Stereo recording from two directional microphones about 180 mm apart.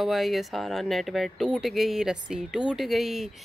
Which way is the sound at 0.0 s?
Centre (ahead or behind).